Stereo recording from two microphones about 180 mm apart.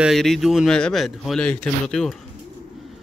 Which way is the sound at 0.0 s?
Centre (ahead or behind).